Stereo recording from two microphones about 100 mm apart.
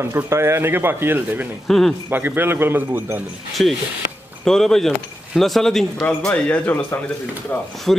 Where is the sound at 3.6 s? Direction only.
5° left (ahead or behind).